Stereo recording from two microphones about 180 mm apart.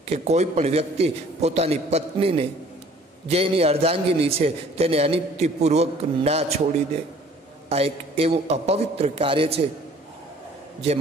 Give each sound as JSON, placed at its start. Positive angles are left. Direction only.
{"t": 0.1, "sound": "a man's voice", "side_deg": -35}
{"t": 7.7, "sound": "a man's voice", "side_deg": -35}